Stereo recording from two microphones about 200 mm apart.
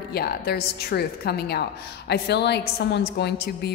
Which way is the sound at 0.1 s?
50° left (ahead or behind).